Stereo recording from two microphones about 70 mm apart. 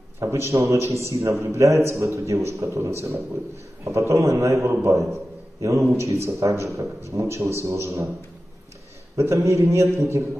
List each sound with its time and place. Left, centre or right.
0.2 s a man's voice: right
9.1 s a man's voice: right